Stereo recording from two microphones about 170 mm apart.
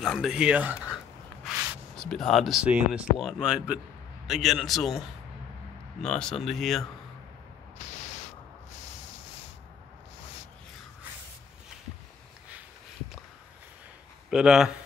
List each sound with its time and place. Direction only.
0.0 s a sound: centre (ahead or behind)
2.0 s speech: 5° left (ahead or behind)
7.8 s spray: 40° left (ahead or behind)
14.3 s speech: 5° right (ahead or behind)